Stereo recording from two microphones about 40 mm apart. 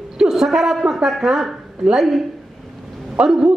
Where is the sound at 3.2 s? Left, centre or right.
Right.